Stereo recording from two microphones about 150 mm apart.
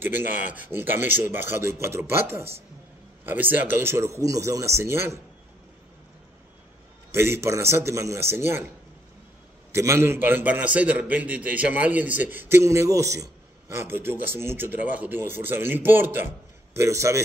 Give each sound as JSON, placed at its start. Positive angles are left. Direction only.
{"t": 0.0, "sound": "a man's voice", "side_deg": -15}
{"t": 7.1, "sound": "a man's voice", "side_deg": -15}
{"t": 9.7, "sound": "a man's voice", "side_deg": -20}